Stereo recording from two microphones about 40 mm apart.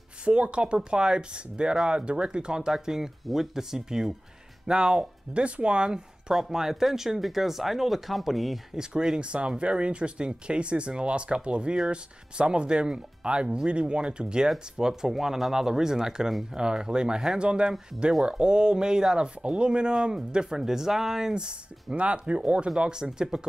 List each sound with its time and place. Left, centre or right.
0.2 s speech: right; by 4.1 s centre
4.6 s speech: right
6.3 s speech: centre
8.7 s speech: centre
20.0 s speech: centre
21.9 s speech: right
22.8 s speech: centre